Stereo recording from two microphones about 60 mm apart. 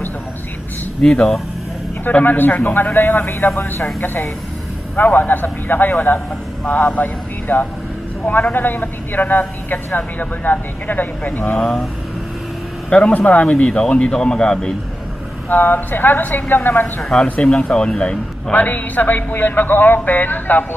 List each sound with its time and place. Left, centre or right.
1.0 s a man's voice: centre
2.0 s a man's voice: left
11.5 s a man's voice: centre
12.9 s a man's voice: centre
15.5 s a man's voice: left
17.1 s a man's voice: centre
18.5 s a man's voice: left